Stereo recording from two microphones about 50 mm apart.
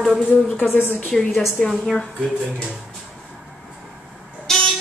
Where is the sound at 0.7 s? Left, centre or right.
Left.